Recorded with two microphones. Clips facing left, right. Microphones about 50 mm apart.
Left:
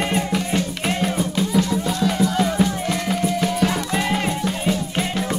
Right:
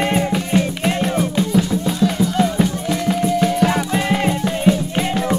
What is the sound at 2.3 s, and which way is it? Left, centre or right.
Music, centre.